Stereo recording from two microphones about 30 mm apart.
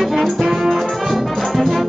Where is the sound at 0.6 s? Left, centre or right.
Centre.